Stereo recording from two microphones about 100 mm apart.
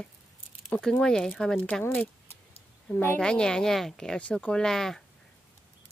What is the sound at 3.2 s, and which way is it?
Speech, 5° left (ahead or behind).